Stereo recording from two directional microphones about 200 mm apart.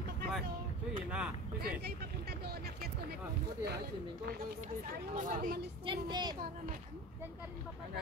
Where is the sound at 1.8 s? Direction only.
55° right (ahead or behind).